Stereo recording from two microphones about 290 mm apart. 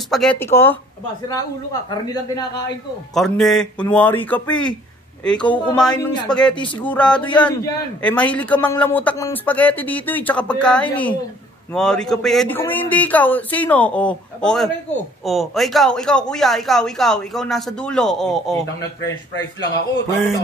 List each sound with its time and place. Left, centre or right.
0.1 s a man's voice: centre
3.2 s a man's voice: centre
20.1 s a man's voice: centre